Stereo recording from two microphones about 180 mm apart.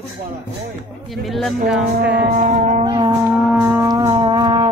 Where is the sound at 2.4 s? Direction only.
40° right (ahead or behind).